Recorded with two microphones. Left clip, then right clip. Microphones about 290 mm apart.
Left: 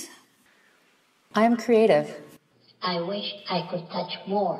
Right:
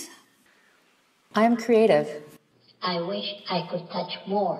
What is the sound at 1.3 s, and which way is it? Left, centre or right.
A woman's voice, left.